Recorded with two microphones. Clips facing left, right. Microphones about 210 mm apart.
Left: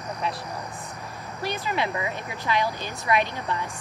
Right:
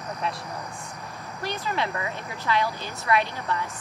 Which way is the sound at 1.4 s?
5° left (ahead or behind).